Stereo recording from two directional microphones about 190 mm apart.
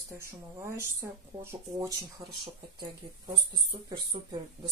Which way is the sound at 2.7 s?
25° right (ahead or behind).